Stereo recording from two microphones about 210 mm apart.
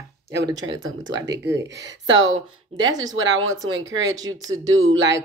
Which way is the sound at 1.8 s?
65° right (ahead or behind).